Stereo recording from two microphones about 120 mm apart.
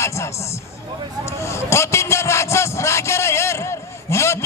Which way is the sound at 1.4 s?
25° left (ahead or behind).